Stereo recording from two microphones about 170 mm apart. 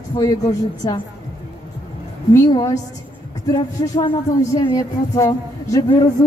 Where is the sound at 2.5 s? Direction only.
25° left (ahead or behind).